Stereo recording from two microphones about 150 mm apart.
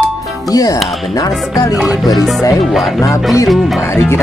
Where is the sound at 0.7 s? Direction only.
Centre (ahead or behind).